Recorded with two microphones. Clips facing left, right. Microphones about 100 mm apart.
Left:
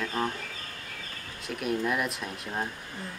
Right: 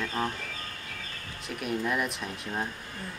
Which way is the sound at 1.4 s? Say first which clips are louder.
Left 2 dB; centre (ahead or behind).